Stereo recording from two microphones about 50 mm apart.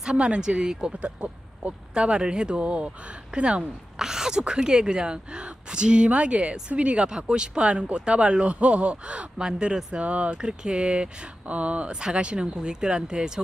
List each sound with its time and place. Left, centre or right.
0.0 s speech: centre
4.0 s speech: centre